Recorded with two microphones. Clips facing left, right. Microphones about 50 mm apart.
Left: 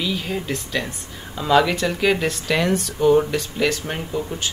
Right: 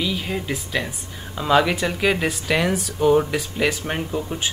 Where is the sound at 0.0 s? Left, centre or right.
Centre.